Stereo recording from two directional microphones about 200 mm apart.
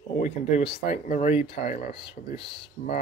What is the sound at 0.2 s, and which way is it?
Speech, 30° left (ahead or behind).